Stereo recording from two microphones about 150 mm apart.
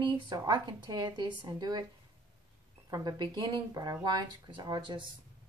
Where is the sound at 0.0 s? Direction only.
30° right (ahead or behind).